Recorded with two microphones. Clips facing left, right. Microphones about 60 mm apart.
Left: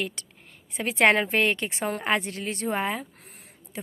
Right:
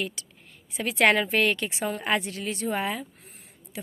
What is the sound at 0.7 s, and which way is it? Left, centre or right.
A woman's voice, left.